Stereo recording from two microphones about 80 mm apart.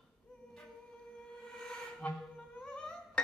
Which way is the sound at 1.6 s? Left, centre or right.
Centre.